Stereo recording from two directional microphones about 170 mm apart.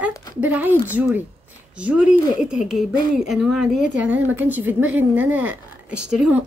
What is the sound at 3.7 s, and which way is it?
Speech, 50° left (ahead or behind).